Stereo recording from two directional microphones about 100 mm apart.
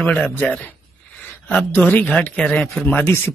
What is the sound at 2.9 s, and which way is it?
Speech, 20° left (ahead or behind).